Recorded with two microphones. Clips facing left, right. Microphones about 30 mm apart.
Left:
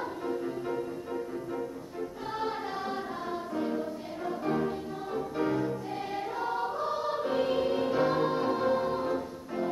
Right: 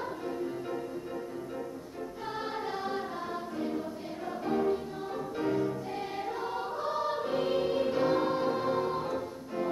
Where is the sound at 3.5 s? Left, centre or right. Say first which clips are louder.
Left 4 dB; centre.